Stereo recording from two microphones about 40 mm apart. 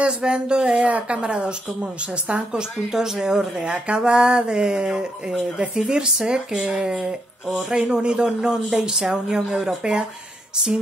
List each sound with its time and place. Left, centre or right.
0.0 s a woman's voice: right
2.9 s a woman's voice: centre